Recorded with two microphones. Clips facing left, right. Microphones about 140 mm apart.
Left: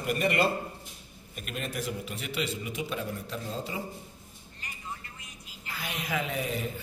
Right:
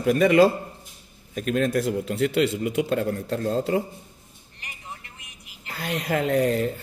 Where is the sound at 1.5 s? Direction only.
90° right; by 3.8 s 65° right (ahead or behind).